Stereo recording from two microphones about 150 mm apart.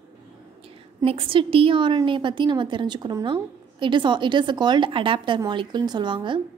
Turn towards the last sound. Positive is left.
turn(degrees=-30)  # may be behind; listen again after turning